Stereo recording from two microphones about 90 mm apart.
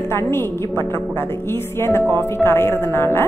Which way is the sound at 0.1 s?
30° left (ahead or behind).